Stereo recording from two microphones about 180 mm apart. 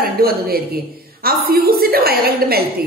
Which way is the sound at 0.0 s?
55° right (ahead or behind).